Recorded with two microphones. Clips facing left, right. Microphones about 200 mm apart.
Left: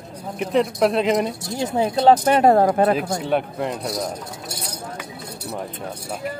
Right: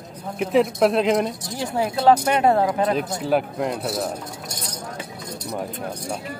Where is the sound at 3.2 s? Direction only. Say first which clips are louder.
Right 1 dB; centre (ahead or behind).